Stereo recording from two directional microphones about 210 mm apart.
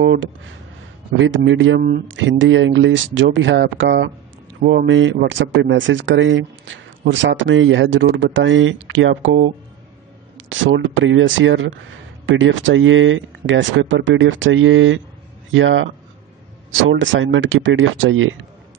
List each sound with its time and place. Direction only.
0.0 s speech: 65° right (ahead or behind)
1.8 s speech: 45° right (ahead or behind)
2.0 s speech: 65° right (ahead or behind)